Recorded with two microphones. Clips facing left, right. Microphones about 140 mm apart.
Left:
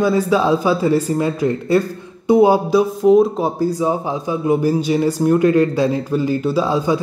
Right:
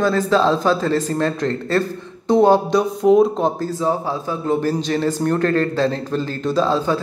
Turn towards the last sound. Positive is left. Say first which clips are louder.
# left 1 dB
turn(degrees=15)  # may be behind; listen again after turning